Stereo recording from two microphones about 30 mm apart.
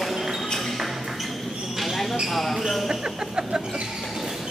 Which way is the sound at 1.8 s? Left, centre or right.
Centre.